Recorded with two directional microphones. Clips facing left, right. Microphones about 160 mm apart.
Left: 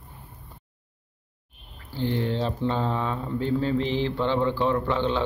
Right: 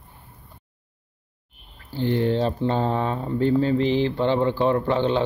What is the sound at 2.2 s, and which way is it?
Speech, 45° right (ahead or behind).